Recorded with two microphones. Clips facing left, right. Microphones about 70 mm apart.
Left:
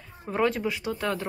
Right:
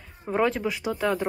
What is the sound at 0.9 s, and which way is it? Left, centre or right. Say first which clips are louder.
Speech: right 7 dB; centre.